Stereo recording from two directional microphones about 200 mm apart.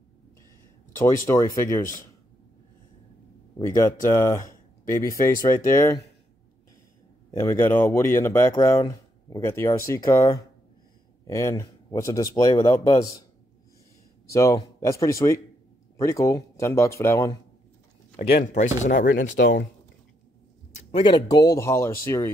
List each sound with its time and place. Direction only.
1.0 s speech: 15° left (ahead or behind)
3.5 s speech: 15° left (ahead or behind)
7.2 s speech: 15° left (ahead or behind)
14.3 s speech: 15° left (ahead or behind)
18.1 s speech: 45° left (ahead or behind)
20.9 s speech: 25° left (ahead or behind)